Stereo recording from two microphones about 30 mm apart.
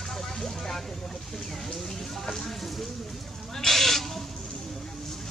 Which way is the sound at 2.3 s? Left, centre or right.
Centre.